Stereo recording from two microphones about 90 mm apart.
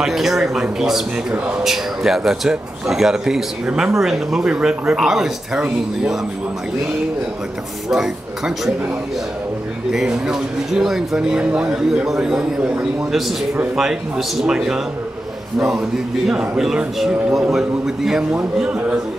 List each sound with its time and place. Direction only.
0.0 s a man's voice: 5° right (ahead or behind)
7.9 s a man's voice: 5° right (ahead or behind)
9.8 s a man's voice: 5° right (ahead or behind)
16.3 s a man's voice: 5° right (ahead or behind)